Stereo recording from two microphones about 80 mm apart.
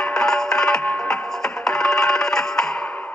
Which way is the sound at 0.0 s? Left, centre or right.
Centre.